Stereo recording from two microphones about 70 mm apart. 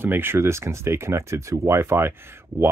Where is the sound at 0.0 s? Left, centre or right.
Right.